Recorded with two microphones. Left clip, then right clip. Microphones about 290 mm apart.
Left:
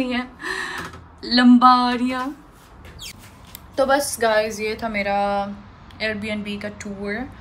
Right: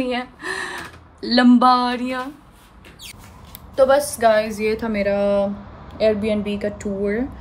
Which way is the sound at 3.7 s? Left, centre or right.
Centre.